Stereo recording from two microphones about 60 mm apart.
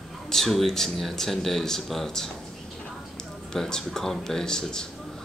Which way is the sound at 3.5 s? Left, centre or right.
Centre.